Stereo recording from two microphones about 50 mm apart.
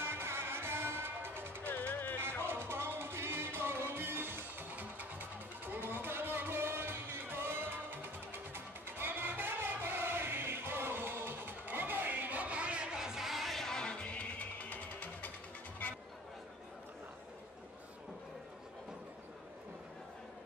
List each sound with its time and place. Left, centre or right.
0.0 s music: right
1.7 s music: left
2.4 s music: right; by 13.7 s centre
13.7 s music: left
15.8 s chatter: left